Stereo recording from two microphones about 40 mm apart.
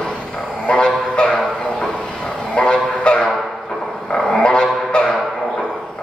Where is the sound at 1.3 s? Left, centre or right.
Centre.